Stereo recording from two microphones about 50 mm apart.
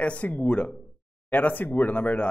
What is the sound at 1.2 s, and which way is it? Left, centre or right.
Speech, left.